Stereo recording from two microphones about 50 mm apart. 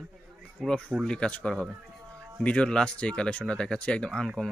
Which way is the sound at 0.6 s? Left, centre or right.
Centre.